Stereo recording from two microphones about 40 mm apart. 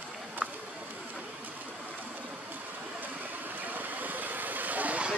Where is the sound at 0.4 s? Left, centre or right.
Right.